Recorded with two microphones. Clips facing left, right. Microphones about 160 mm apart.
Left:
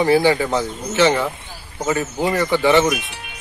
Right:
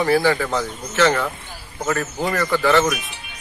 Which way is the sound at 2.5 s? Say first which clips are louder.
Left 2 dB; 25° left (ahead or behind).